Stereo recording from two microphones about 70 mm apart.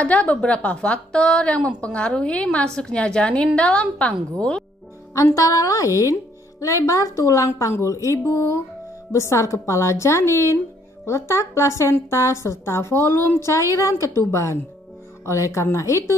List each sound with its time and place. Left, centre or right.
0.0 s a woman's voice: centre
5.1 s a woman's voice: left